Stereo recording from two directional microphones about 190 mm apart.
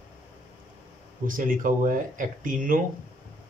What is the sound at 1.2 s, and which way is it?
Speech, 45° right (ahead or behind).